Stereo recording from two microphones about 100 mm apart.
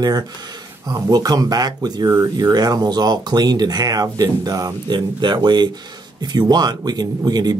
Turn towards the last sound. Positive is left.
turn(degrees=-45)  # may be behind; listen again after turning